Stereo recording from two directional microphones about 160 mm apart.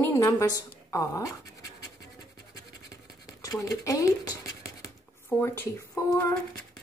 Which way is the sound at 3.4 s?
20° left (ahead or behind).